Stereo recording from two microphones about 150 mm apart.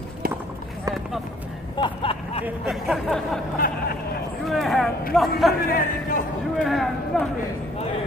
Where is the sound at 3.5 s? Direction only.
70° left (ahead or behind).